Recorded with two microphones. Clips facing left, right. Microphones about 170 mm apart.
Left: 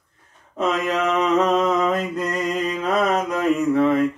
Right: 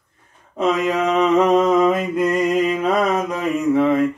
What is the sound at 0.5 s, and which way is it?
Mantra, 15° right (ahead or behind).